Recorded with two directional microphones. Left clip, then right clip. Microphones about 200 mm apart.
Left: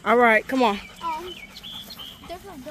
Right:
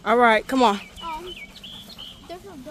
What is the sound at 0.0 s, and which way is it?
Speech, centre (ahead or behind).